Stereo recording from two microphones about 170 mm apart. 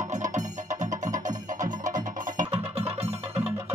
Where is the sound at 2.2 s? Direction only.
45° right (ahead or behind).